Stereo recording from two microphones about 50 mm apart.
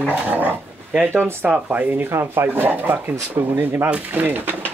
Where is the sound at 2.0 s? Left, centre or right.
Right.